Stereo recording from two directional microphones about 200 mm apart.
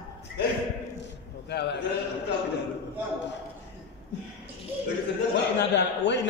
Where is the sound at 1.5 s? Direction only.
55° left (ahead or behind).